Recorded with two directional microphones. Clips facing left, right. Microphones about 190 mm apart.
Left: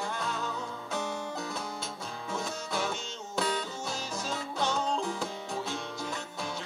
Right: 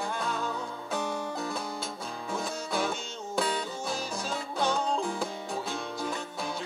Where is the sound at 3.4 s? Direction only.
10° right (ahead or behind).